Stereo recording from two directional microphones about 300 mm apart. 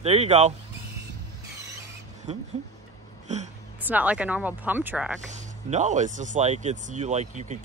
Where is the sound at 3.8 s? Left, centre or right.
Centre.